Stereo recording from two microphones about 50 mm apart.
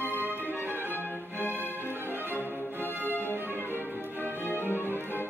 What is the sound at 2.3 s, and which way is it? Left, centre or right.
Music, left.